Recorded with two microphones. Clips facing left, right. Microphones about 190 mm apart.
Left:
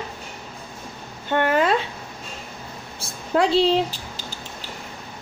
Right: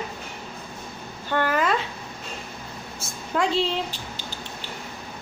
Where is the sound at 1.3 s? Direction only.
25° left (ahead or behind).